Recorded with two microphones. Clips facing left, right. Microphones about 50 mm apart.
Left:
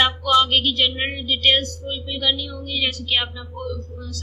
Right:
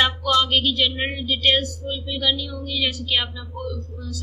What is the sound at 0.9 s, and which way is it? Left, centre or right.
A woman's voice, centre.